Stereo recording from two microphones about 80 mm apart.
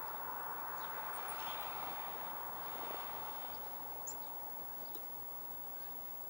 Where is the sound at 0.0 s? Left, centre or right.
Centre.